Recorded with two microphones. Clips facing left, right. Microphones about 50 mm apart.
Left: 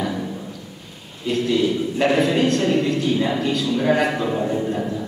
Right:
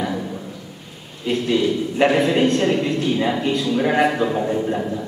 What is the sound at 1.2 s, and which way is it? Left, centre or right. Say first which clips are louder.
A man's voice: even; right.